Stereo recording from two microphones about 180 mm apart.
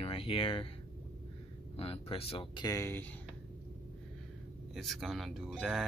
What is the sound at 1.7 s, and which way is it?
Speech, 35° left (ahead or behind).